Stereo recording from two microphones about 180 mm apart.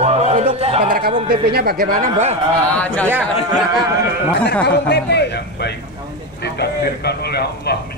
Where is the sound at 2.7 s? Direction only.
10° left (ahead or behind).